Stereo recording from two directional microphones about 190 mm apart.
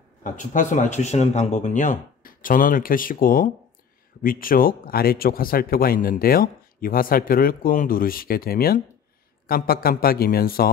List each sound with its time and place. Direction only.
0.2 s speech: 40° left (ahead or behind)